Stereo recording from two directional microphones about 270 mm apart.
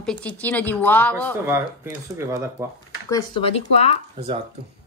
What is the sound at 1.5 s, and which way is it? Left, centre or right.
Speech, centre.